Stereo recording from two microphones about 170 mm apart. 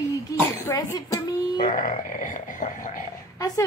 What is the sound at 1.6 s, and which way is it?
Speech, 45° left (ahead or behind).